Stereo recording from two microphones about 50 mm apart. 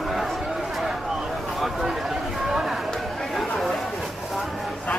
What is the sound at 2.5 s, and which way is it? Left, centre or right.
Chatter, centre.